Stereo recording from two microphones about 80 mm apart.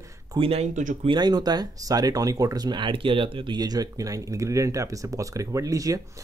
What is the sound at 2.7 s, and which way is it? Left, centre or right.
Speech, right.